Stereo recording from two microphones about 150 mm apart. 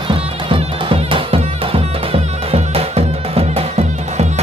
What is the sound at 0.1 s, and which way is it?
Music, 35° right (ahead or behind).